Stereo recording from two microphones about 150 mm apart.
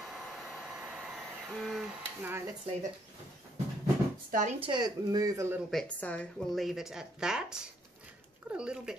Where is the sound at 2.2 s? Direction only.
15° right (ahead or behind).